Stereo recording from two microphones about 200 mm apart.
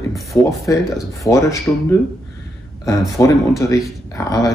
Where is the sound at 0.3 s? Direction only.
20° left (ahead or behind).